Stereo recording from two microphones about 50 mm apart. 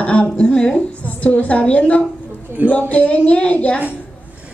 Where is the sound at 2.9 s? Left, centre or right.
Left.